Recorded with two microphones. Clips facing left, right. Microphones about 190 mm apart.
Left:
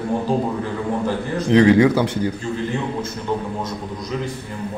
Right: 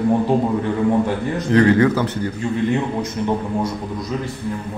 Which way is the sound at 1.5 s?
15° left (ahead or behind).